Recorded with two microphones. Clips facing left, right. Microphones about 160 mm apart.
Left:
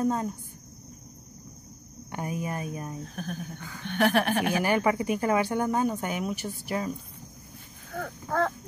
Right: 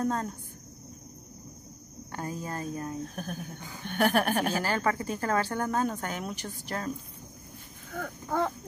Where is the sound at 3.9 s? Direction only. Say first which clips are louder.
Left 1 dB; 45° right (ahead or behind).